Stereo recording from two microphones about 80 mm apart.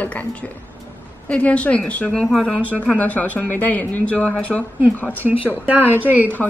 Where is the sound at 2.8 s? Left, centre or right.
Centre.